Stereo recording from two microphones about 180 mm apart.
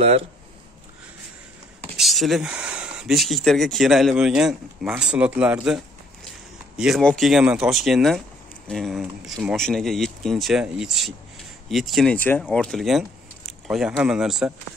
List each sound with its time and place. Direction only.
0.0 s speech: 35° right (ahead or behind)
2.0 s speech: centre (ahead or behind)
6.8 s speech: centre (ahead or behind)